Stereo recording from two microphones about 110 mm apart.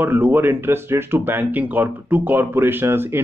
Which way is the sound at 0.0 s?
20° right (ahead or behind).